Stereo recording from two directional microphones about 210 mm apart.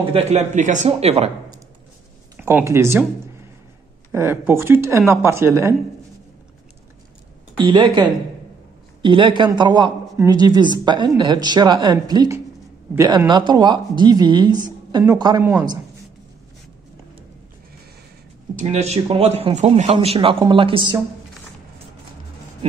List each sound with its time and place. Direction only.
0.1 s speech: 30° right (ahead or behind)
2.3 s speech: 10° right (ahead or behind)
4.1 s speech: 10° right (ahead or behind)
7.5 s speech: 25° right (ahead or behind)
18.6 s speech: 35° right (ahead or behind)